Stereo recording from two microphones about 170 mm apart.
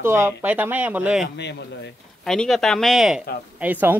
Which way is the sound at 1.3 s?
90° left.